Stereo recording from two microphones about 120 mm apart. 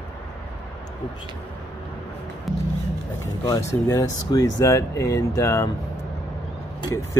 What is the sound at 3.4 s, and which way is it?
Speech, 30° left (ahead or behind).